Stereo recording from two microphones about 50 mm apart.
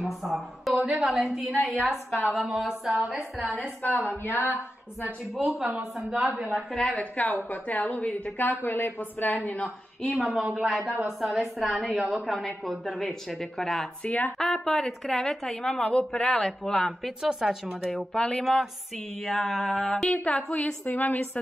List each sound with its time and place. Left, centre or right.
0.0 s a woman's voice: centre
4.0 s speech: left
5.3 s a woman's voice: centre
7.0 s a woman's voice: left
8.4 s speech: left
10.1 s a woman's voice: centre
14.0 s a woman's voice: left
14.4 s a woman's voice: centre
17.2 s a woman's voice: centre
17.6 s a woman's voice: centre
21.0 s a woman's voice: left